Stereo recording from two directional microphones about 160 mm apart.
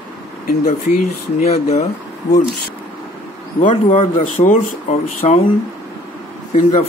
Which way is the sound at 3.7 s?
40° left (ahead or behind).